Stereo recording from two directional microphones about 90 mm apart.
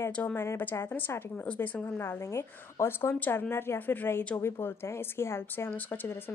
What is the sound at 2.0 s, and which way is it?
Speech, 30° left (ahead or behind).